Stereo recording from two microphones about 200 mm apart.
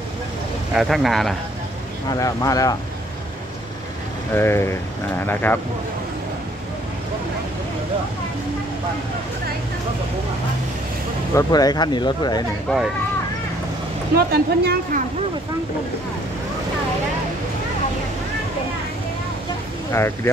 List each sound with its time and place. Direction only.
0.7 s speech: centre (ahead or behind)
2.0 s speech: 15° left (ahead or behind)
4.3 s speech: 10° left (ahead or behind)
11.3 s speech: 20° left (ahead or behind)
12.6 s speech: centre (ahead or behind)
14.1 s speech: 50° right (ahead or behind)